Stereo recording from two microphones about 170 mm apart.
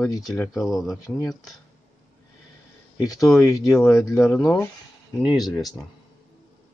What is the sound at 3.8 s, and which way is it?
Speech, 15° left (ahead or behind).